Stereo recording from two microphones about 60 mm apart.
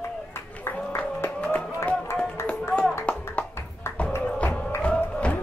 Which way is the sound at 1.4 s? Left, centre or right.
Left.